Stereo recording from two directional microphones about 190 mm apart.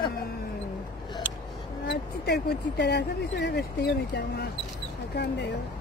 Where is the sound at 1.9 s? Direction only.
60° left (ahead or behind).